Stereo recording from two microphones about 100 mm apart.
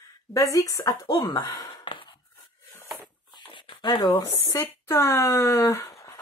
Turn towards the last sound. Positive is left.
turn(degrees=30)  # may be behind; listen again after turning